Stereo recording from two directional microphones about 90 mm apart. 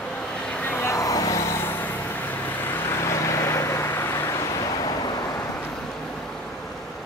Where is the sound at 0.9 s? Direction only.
40° left (ahead or behind).